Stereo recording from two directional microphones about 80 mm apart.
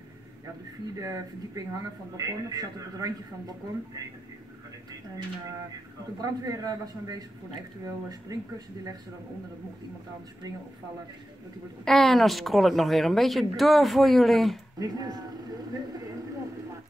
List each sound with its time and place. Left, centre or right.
0.9 s a man's voice: right
6.2 s a man's voice: right
11.8 s speech: centre
14.8 s speech: right